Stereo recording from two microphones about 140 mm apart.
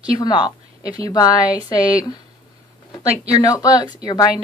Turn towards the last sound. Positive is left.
turn(degrees=30)  # may be behind; listen again after turning